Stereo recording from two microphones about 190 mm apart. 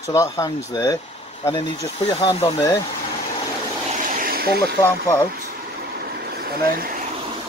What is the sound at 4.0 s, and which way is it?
Vehicle, 50° right (ahead or behind).